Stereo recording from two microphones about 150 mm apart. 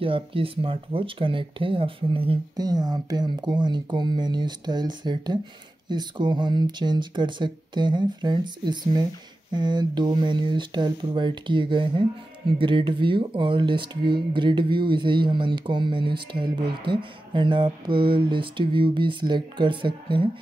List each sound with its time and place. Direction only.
0.0 s speech: 35° right (ahead or behind)